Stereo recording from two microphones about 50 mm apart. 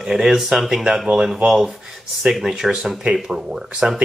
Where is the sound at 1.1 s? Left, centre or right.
Centre.